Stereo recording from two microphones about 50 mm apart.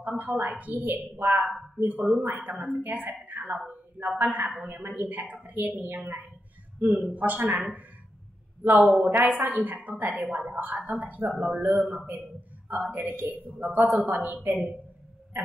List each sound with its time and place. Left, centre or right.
0.2 s a woman's voice: right
8.6 s a woman's voice: right
15.3 s a sound: right